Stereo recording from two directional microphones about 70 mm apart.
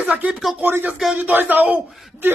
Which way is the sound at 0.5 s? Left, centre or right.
Right.